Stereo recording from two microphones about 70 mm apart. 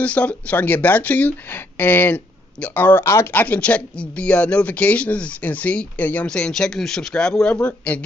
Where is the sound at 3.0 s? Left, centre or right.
Left.